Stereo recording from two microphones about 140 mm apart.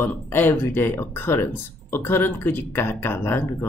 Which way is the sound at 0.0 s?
15° left (ahead or behind).